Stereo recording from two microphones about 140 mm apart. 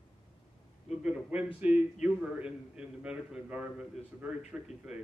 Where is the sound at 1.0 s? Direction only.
10° right (ahead or behind).